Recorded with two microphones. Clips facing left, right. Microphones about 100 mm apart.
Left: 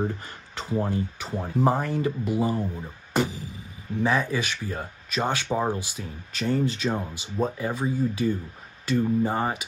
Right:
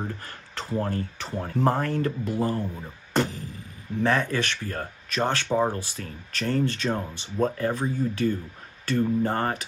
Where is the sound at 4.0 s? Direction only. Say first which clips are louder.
Even; 5° left (ahead or behind).